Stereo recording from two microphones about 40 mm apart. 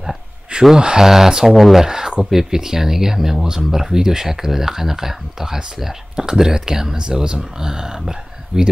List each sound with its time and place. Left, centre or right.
0.7 s speech: centre
1.9 s speech: centre